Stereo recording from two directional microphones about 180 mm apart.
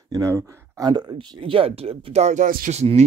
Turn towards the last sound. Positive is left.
turn(degrees=-40)  # may be behind; listen again after turning